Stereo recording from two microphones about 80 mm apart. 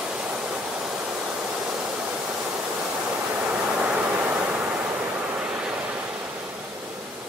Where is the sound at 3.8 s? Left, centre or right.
Centre.